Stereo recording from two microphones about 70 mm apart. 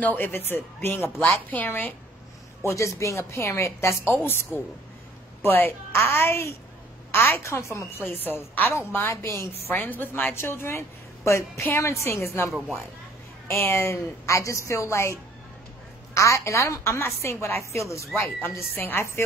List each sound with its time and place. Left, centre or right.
0.0 s a woman's voice: left
2.6 s a woman's voice: left
4.1 s a woman's voice: left
7.4 s a woman's voice: left
8.0 s a woman's voice: left
9.8 s a woman's voice: left
13.5 s a woman's voice: left
16.2 s a woman's voice: left
18.1 s a woman's voice: left